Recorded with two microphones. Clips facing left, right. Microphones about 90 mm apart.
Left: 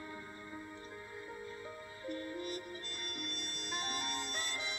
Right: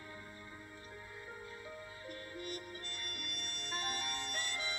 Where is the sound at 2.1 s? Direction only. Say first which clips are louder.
Left 5 dB; 30° left (ahead or behind).